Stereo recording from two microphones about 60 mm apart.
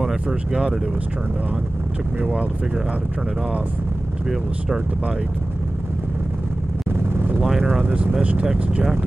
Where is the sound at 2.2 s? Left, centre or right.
Right.